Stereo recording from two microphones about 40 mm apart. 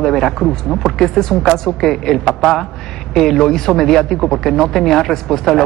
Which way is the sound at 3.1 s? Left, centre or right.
Centre.